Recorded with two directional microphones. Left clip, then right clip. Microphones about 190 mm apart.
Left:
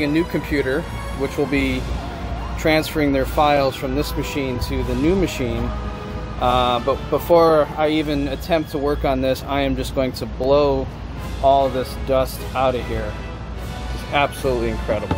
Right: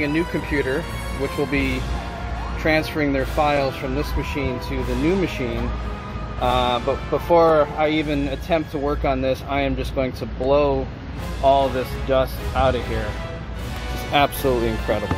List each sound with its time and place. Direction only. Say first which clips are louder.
0.0 s speech: left 2 dB; 15° left (ahead or behind)
14.1 s speech: right 1 dB; 30° right (ahead or behind)